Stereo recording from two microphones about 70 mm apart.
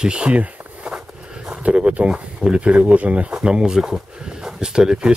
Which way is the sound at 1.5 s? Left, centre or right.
Centre.